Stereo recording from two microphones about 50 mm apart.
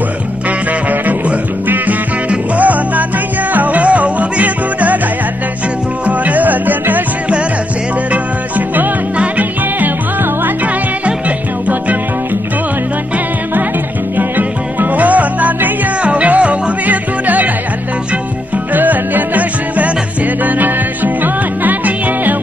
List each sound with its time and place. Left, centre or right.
0.8 s music: right
6.0 s music: right
8.1 s music: right
11.1 s music: right
14.1 s music: right
18.7 s music: right